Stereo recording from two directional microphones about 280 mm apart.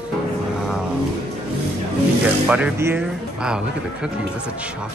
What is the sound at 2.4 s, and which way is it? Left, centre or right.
Speech, centre.